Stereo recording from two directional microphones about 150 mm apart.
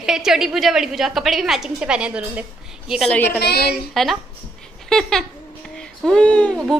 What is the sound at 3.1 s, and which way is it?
Speech, 15° left (ahead or behind).